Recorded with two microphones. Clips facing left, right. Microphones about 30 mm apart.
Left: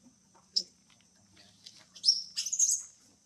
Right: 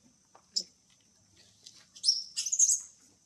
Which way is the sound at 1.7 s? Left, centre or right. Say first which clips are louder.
Left 1 dB; centre.